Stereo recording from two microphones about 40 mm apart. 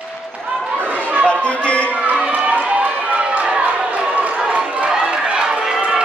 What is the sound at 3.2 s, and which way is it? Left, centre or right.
Run, right.